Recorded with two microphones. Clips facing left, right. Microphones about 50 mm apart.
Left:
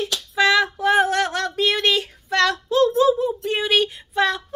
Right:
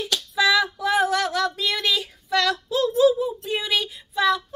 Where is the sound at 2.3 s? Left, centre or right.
Left.